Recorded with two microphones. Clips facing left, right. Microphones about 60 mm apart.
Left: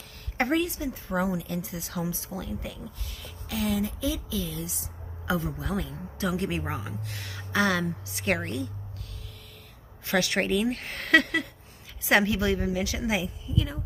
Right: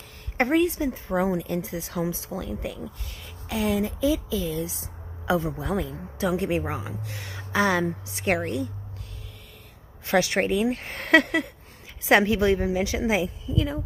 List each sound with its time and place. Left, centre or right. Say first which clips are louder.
0.4 s speech: right 4 dB; right
8.4 s speech: right 4 dB; centre
10.0 s speech: right 4 dB; right